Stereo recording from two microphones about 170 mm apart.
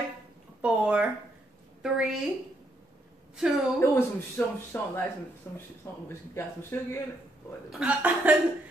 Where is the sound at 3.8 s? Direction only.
10° left (ahead or behind).